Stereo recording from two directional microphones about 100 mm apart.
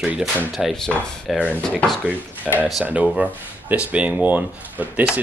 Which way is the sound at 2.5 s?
Centre (ahead or behind).